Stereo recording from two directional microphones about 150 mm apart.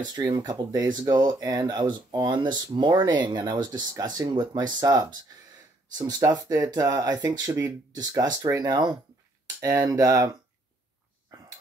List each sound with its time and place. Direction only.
0.0 s speech: 25° right (ahead or behind)
11.3 s dog: 25° right (ahead or behind)